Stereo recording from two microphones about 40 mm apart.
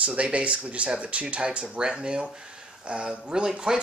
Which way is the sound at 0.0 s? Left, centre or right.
Right.